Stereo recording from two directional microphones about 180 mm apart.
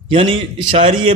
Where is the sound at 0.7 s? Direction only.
30° right (ahead or behind).